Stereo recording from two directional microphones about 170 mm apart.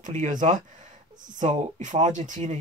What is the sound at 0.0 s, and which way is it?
Speech, 50° right (ahead or behind).